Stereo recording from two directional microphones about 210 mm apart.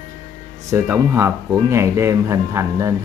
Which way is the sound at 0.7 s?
10° right (ahead or behind).